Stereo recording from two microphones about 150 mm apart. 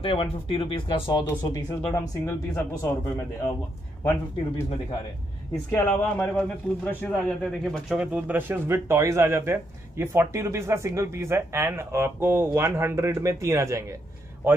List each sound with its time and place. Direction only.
0.0 s speech: 35° left (ahead or behind)
2.2 s speech: 15° left (ahead or behind)
4.0 s speech: 10° left (ahead or behind)
5.7 s a man's voice: 15° left (ahead or behind); by 14.6 s 15° right (ahead or behind)